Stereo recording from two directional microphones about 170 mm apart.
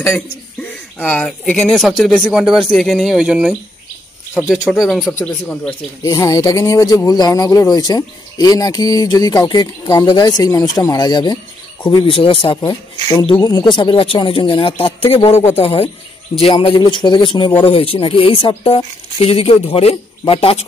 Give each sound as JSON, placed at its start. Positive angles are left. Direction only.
{"t": 0.9, "sound": "speech", "side_deg": 10}
{"t": 6.0, "sound": "speech", "side_deg": 20}